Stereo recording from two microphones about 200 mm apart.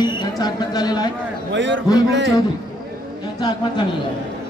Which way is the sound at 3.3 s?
20° left (ahead or behind).